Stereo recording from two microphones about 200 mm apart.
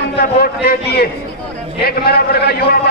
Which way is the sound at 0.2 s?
50° left (ahead or behind).